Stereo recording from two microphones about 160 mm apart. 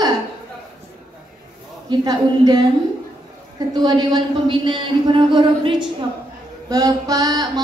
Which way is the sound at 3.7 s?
25° right (ahead or behind).